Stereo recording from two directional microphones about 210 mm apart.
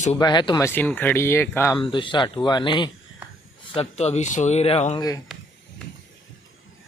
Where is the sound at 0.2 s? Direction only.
20° left (ahead or behind).